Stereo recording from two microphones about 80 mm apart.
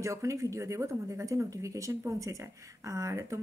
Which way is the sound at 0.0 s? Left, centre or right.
Right.